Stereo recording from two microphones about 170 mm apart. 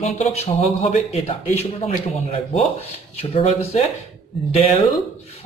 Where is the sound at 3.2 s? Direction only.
40° left (ahead or behind).